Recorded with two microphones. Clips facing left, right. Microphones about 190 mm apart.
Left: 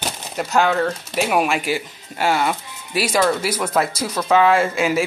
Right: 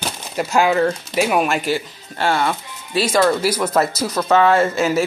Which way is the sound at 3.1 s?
Centre (ahead or behind).